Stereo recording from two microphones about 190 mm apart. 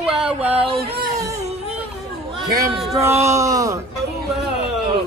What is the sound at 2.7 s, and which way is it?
Speech, centre (ahead or behind).